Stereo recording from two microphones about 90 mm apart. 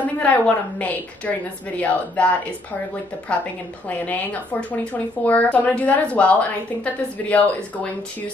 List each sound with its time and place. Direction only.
0.0 s speech: 15° left (ahead or behind)
3.9 s speech: 15° left (ahead or behind)